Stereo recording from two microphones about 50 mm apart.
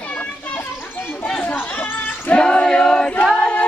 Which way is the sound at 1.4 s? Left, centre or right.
Left.